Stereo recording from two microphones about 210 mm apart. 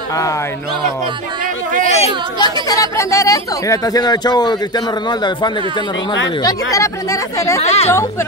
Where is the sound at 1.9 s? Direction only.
30° left (ahead or behind).